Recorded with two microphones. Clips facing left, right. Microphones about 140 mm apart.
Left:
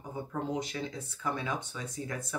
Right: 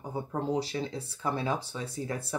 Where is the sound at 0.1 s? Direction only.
35° right (ahead or behind).